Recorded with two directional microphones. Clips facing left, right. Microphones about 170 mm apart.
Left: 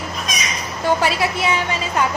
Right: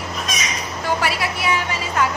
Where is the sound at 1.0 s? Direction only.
25° left (ahead or behind).